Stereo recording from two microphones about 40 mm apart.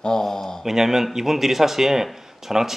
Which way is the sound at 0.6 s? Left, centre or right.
Centre.